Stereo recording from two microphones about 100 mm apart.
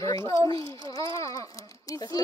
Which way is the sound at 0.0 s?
30° left (ahead or behind).